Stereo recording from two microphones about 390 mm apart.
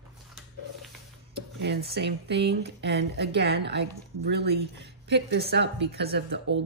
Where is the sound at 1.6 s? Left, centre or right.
Right.